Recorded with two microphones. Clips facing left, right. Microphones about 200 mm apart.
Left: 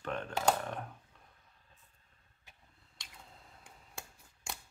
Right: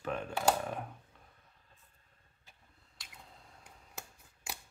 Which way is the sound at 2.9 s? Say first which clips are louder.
Even; 5° right (ahead or behind).